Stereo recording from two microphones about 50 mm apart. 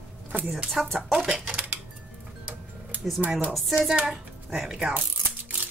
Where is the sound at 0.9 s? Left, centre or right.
Centre.